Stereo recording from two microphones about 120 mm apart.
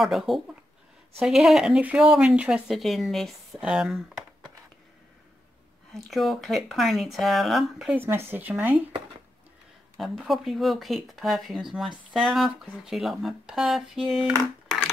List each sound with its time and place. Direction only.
0.0 s speech: centre (ahead or behind)
5.9 s speech: centre (ahead or behind)
7.9 s speech: 20° right (ahead or behind)
9.9 s speech: centre (ahead or behind)